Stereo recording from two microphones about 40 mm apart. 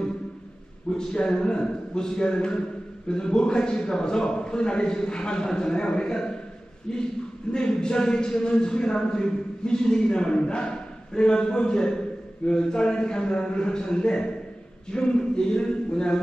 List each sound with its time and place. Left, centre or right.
0.9 s a man's voice: centre